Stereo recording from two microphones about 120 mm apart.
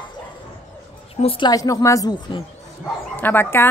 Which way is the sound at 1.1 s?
55° left (ahead or behind).